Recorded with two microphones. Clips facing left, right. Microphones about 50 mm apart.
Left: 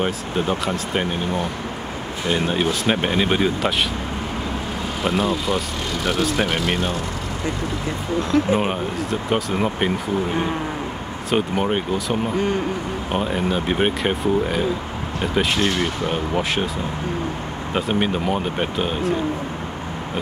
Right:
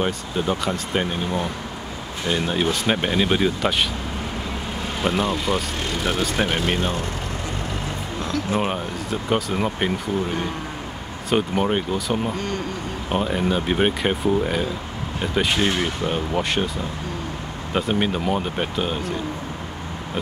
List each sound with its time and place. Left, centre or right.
0.0 s speech: centre
2.2 s speech: centre
5.0 s speech: centre
6.0 s speech: centre
8.2 s speech: left
9.3 s speech: centre
11.2 s speech: centre
12.4 s speech: centre
13.1 s speech: centre
17.7 s speech: centre